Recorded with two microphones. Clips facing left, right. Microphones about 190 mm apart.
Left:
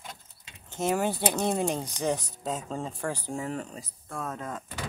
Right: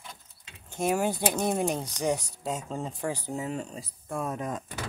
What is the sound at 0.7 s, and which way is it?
Speech, 10° right (ahead or behind).